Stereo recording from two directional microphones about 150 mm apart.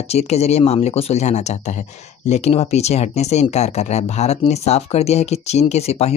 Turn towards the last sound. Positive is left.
turn(degrees=45)  # may be behind; listen again after turning